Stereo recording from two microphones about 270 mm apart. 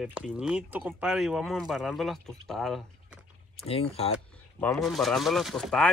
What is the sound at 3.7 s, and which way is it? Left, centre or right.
Speech, left.